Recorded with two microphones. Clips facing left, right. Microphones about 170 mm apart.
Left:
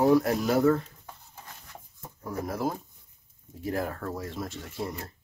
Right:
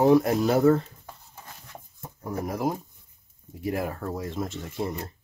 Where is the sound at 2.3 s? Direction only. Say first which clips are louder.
Right 2 dB; 15° right (ahead or behind).